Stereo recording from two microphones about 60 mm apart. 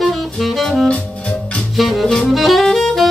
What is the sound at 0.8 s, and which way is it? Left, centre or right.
Organ, centre.